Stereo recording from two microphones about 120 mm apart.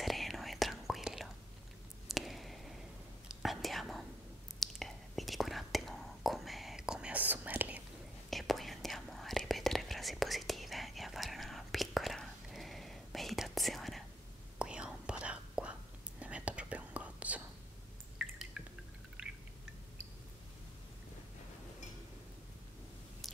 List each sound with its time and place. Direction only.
0.0 s whispering: centre (ahead or behind)
2.0 s a sound: centre (ahead or behind)
3.3 s whispering: centre (ahead or behind)
8.3 s whispering: centre (ahead or behind)
18.2 s drip: 5° right (ahead or behind)